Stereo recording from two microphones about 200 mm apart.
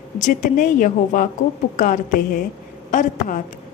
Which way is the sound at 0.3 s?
40° left (ahead or behind).